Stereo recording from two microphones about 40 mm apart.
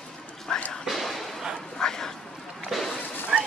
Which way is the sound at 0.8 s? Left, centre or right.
Centre.